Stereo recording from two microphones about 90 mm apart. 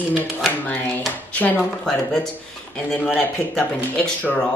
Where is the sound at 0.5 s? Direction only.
20° left (ahead or behind).